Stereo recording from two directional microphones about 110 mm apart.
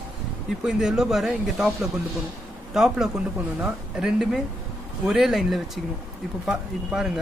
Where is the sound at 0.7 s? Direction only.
5° right (ahead or behind).